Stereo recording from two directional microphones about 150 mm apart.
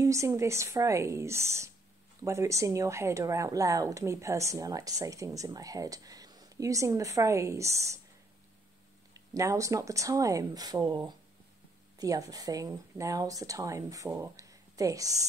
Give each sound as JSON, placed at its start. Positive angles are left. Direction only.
{"t": 0.0, "sound": "speech", "side_deg": -20}
{"t": 9.1, "sound": "speech", "side_deg": -20}